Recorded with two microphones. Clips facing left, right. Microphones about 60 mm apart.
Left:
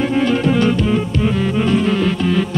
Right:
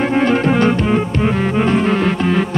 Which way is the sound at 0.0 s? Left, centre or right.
Right.